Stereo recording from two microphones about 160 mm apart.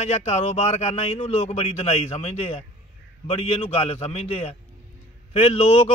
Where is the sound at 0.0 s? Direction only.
45° left (ahead or behind).